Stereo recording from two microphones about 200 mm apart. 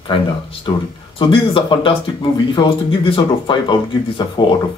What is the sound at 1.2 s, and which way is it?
Speech, 25° left (ahead or behind).